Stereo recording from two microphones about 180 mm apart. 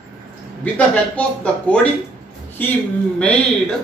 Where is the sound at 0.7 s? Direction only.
5° left (ahead or behind).